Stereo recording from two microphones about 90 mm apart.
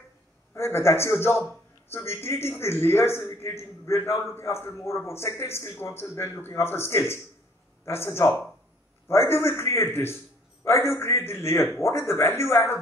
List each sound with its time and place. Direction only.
0.6 s a man's voice: 30° left (ahead or behind)